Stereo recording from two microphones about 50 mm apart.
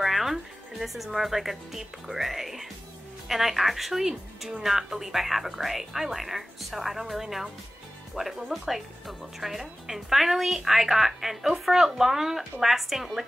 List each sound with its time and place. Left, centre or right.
0.0 s speech: centre